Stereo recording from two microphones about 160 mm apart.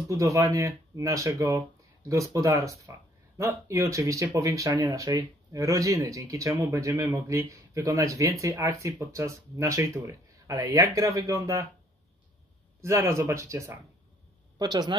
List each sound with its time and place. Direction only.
0.1 s speech: 20° right (ahead or behind)
12.8 s speech: 20° right (ahead or behind)